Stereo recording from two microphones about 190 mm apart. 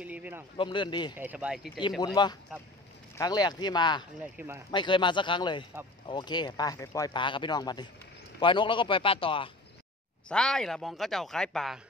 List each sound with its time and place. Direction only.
0.0 s speech: 10° right (ahead or behind)
0.6 s speech: 25° left (ahead or behind)
1.1 s speech: 10° right (ahead or behind)
1.8 s speech: 20° left (ahead or behind)
4.2 s speech: 10° right (ahead or behind)
4.6 s speech: 25° left (ahead or behind)
10.2 s speech: 5° left (ahead or behind)